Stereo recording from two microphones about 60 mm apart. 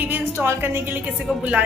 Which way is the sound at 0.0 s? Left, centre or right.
Right.